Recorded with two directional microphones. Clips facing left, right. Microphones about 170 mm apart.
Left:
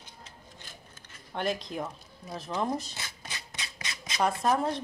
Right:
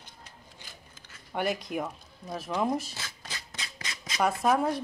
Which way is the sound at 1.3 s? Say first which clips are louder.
Right 2 dB; 10° right (ahead or behind).